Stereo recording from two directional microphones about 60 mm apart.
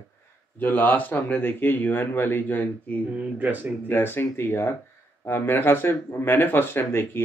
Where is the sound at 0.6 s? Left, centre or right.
Left.